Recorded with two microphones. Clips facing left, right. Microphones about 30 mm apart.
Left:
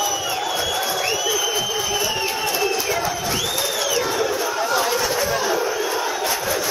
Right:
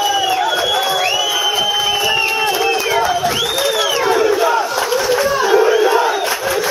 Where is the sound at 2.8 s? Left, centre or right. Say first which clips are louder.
Right 8 dB; right.